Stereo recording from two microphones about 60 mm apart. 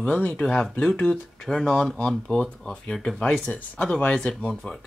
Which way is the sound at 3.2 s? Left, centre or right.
Left.